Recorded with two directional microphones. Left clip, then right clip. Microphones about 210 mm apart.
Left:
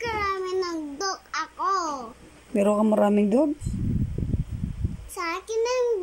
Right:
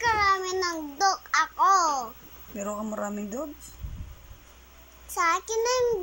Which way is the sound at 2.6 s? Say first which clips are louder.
Left 11 dB; 45° left (ahead or behind).